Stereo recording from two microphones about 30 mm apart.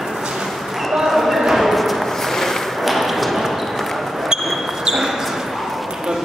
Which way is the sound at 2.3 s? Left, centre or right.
Centre.